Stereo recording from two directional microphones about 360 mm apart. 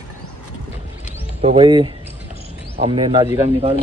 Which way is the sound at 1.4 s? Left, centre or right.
Centre.